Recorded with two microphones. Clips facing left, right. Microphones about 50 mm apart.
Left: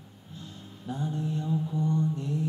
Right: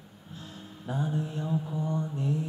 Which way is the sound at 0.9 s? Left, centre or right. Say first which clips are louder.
Even; centre.